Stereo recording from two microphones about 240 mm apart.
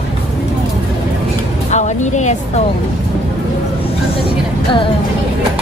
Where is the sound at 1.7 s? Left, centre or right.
Left.